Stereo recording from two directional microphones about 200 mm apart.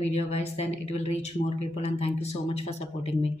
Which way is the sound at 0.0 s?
35° left (ahead or behind).